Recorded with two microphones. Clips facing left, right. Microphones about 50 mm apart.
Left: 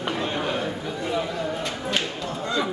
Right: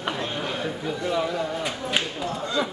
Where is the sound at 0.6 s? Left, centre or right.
Centre.